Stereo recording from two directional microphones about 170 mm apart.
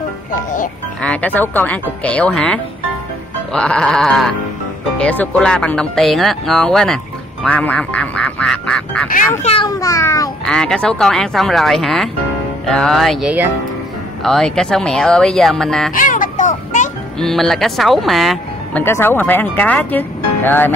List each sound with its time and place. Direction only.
1.0 s speech: 10° left (ahead or behind)
9.4 s a child's voice: 35° left (ahead or behind)
9.7 s meow: 20° left (ahead or behind)
10.4 s speech: 5° left (ahead or behind)
15.9 s music: 50° left (ahead or behind)
17.2 s speech: centre (ahead or behind)